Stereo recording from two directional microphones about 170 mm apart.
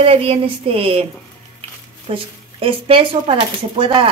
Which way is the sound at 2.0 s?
35° right (ahead or behind).